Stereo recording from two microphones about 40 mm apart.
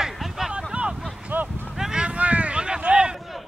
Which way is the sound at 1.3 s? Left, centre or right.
Right.